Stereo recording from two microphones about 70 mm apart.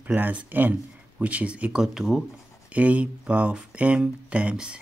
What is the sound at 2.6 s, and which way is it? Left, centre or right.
Speech, centre.